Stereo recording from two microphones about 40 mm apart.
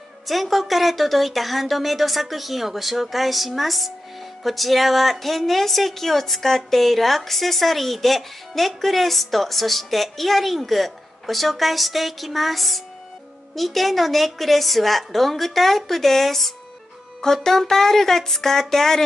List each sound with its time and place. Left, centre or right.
0.3 s a woman's voice: centre